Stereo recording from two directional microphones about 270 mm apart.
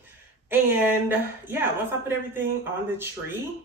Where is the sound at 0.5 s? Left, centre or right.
Centre.